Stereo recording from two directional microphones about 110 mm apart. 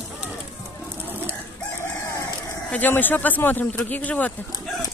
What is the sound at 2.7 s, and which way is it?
Speech, 15° left (ahead or behind).